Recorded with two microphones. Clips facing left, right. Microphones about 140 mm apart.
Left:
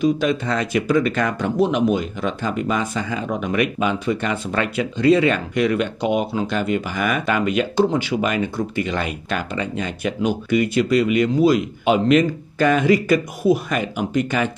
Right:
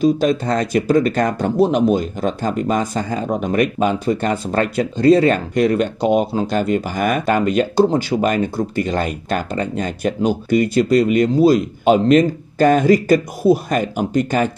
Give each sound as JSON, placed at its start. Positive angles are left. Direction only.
{"t": 0.0, "sound": "speech", "side_deg": -40}